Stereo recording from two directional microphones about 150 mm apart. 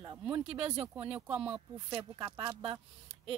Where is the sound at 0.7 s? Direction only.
30° right (ahead or behind).